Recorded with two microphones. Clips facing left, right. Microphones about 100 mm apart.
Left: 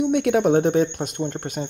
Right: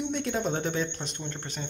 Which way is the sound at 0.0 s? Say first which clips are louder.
Left 11 dB; 65° left (ahead or behind).